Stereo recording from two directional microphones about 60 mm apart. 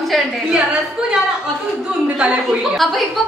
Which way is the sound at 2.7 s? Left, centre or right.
Centre.